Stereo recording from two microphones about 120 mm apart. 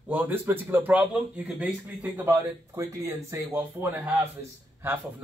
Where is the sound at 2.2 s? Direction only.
25° right (ahead or behind).